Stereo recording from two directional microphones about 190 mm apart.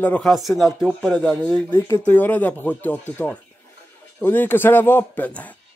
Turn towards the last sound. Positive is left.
turn(degrees=10)  # may be behind; listen again after turning